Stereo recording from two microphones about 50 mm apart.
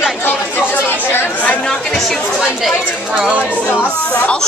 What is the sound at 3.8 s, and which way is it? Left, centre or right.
Speech, left.